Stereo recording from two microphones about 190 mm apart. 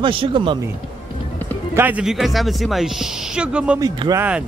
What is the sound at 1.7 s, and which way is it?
Speech, 10° right (ahead or behind).